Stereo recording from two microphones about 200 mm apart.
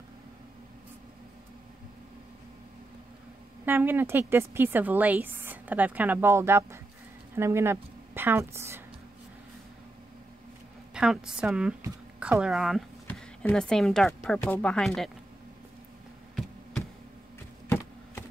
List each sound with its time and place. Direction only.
3.6 s a woman's voice: 10° right (ahead or behind)
10.9 s speech: 5° right (ahead or behind)
17.6 s a sound: 10° left (ahead or behind)